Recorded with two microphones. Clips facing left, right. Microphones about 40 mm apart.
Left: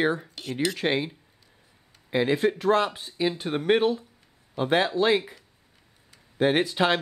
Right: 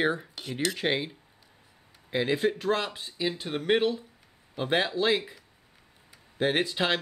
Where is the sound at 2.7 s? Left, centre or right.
Centre.